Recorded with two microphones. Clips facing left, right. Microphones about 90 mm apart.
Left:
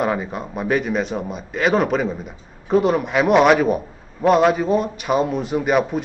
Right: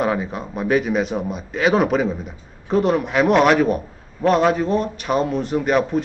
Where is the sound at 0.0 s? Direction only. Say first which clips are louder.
Even; centre (ahead or behind).